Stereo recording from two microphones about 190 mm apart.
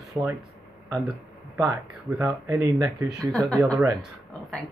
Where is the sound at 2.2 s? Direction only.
15° right (ahead or behind).